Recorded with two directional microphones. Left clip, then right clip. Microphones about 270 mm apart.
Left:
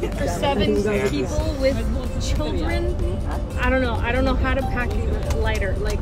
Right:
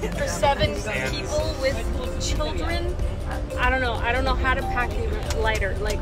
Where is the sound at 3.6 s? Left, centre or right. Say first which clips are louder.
Left 1 dB; centre.